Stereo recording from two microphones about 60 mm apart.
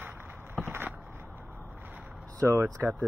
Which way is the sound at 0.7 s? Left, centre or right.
Right.